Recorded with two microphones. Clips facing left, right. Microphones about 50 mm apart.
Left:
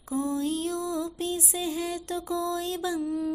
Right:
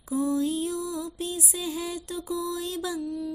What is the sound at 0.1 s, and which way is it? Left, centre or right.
Music, left.